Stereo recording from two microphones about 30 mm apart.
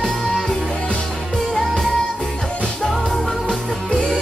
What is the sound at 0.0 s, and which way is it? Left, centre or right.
Music, centre.